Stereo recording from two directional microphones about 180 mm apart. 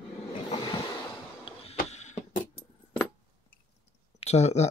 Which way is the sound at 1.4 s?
35° left (ahead or behind).